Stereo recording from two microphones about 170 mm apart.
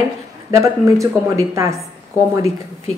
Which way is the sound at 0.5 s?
15° right (ahead or behind).